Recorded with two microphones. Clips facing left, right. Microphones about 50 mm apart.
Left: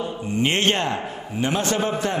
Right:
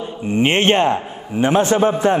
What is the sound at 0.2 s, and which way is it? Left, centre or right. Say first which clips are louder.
A man's voice: right 6 dB; right.